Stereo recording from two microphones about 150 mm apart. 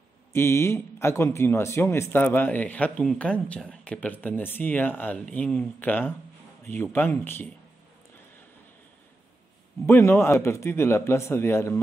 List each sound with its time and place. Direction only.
0.3 s speech: 15° left (ahead or behind)
9.8 s speech: 15° left (ahead or behind)